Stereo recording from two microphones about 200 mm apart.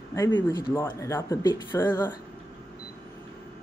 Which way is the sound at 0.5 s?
15° left (ahead or behind).